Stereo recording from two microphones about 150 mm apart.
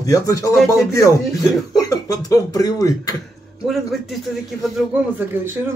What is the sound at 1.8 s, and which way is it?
Speech, 20° left (ahead or behind).